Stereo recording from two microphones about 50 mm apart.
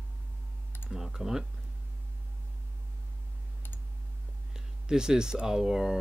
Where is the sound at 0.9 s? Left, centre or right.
Centre.